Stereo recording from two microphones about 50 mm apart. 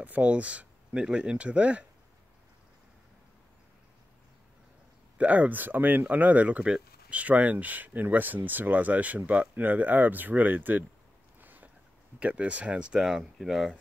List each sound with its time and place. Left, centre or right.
0.0 s speech: right
5.1 s speech: right
6.6 s a sound: centre
7.2 s speech: right
11.4 s a sound: right
12.2 s speech: right
13.4 s speech: centre